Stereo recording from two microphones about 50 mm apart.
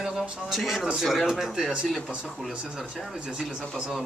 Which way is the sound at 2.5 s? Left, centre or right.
Centre.